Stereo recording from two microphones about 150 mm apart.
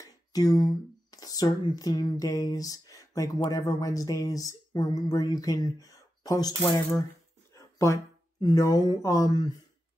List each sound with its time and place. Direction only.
0.0 s speech: 25° left (ahead or behind)